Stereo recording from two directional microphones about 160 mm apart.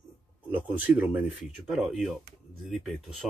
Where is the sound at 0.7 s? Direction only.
10° right (ahead or behind).